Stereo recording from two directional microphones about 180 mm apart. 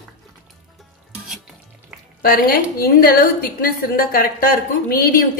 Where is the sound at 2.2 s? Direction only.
55° left (ahead or behind).